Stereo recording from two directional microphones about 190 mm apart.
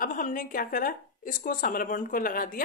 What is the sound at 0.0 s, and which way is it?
A woman's voice, 45° left (ahead or behind).